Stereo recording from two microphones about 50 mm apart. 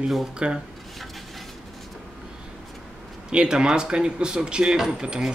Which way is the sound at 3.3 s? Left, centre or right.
Centre.